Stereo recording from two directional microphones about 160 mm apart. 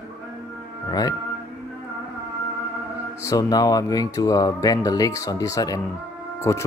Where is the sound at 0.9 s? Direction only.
25° left (ahead or behind).